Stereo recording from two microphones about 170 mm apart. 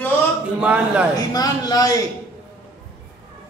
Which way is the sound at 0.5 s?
5° right (ahead or behind).